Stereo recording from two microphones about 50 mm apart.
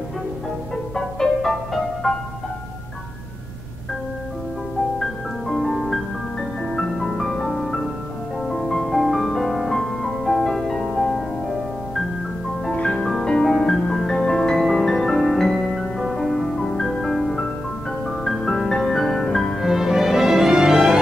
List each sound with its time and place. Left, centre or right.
0.9 s music: centre
4.9 s music: centre
12.9 s music: centre